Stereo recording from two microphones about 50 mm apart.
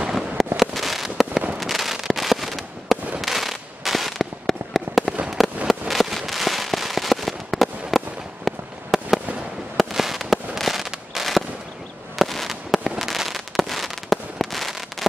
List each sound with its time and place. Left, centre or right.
0.6 s fireworks: centre